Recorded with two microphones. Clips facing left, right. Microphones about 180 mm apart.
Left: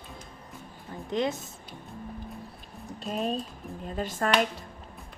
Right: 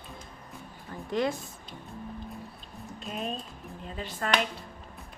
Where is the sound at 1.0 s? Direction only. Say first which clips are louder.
Even; 20° left (ahead or behind).